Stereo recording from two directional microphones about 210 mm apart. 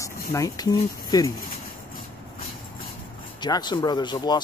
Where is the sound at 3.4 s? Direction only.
20° left (ahead or behind).